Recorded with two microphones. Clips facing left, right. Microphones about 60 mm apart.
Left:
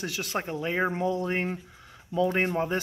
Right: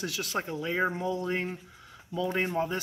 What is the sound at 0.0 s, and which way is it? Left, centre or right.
Speech, left.